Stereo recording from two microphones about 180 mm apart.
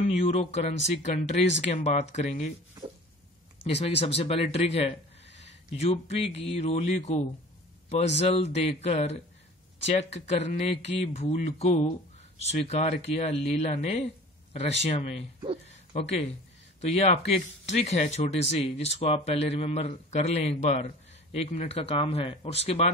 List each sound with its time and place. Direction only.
0.1 s a man's voice: 35° left (ahead or behind)
3.6 s speech: 75° left (ahead or behind)
4.3 s a man's voice: 35° left (ahead or behind)